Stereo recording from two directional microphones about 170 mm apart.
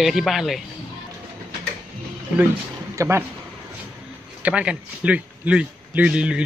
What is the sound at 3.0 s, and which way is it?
Speech, 15° right (ahead or behind).